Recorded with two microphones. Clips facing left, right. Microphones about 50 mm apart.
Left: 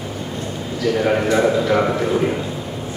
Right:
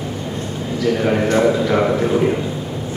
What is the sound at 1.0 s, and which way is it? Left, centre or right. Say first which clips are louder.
A man's voice: left 1 dB; centre.